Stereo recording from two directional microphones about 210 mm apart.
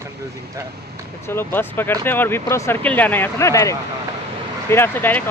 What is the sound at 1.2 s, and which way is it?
Speech, 10° left (ahead or behind).